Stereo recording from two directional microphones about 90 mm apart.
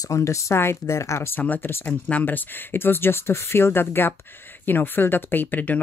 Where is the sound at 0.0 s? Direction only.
35° left (ahead or behind).